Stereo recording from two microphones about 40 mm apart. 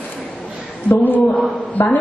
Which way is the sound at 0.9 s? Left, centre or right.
Left.